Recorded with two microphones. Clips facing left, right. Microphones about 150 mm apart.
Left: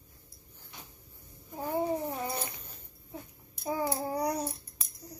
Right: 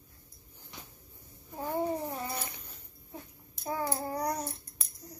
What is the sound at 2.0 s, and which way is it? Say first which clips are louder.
Dog: left 2 dB; 25° left (ahead or behind).